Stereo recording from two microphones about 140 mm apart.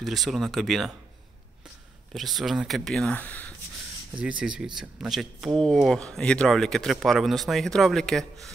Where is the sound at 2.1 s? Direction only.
Centre (ahead or behind).